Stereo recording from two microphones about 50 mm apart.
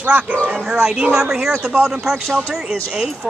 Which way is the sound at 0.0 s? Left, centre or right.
Right.